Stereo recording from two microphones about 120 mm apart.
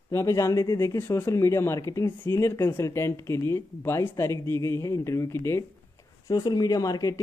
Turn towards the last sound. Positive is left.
turn(degrees=30)  # may be behind; listen again after turning